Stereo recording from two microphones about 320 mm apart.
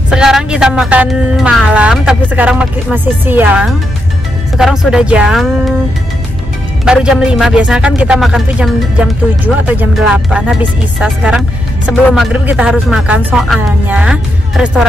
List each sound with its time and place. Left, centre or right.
0.1 s speech: centre
6.8 s speech: centre